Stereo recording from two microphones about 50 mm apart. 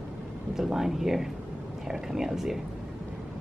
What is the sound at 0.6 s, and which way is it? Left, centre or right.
A woman's voice, centre.